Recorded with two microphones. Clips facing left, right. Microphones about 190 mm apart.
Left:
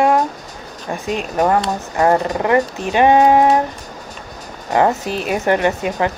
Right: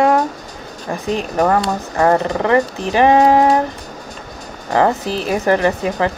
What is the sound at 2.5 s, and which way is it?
A woman's voice, 30° right (ahead or behind).